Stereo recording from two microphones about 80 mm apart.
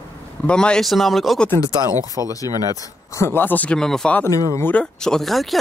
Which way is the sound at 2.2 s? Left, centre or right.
Left.